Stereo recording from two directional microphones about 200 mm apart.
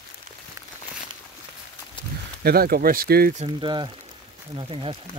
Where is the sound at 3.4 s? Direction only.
25° right (ahead or behind).